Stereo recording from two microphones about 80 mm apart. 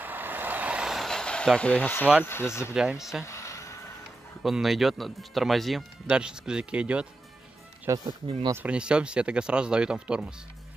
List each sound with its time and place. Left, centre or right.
0.0 s vehicle: right
0.8 s vehicle: centre
2.2 s speech: left
2.7 s speech: centre
3.3 s vehicle: left
4.4 s speech: centre
6.0 s speech: centre
7.9 s speech: right
8.6 s speech: centre